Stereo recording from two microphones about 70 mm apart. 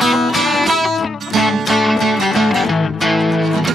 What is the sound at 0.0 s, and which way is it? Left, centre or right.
Music, centre.